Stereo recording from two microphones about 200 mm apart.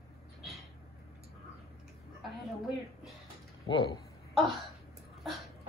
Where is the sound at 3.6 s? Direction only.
20° left (ahead or behind).